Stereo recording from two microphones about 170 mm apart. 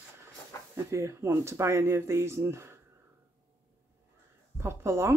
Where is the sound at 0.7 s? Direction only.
15° right (ahead or behind).